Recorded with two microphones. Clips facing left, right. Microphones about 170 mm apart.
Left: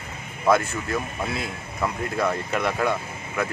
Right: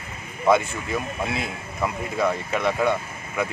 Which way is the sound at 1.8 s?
5° right (ahead or behind).